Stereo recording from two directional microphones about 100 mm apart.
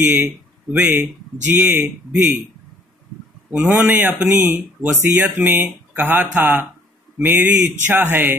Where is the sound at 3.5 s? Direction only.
15° right (ahead or behind).